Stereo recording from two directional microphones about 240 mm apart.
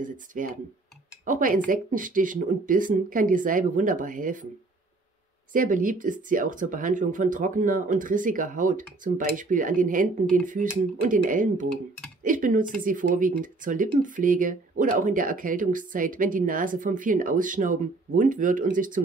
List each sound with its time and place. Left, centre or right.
0.0 s speech: right
5.5 s speech: right